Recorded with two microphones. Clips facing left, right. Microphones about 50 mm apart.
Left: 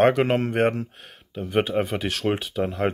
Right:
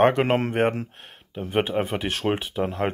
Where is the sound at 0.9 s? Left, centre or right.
Centre.